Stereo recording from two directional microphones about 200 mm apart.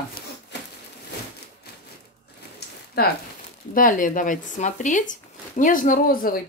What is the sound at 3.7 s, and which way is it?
Speech, 40° left (ahead or behind).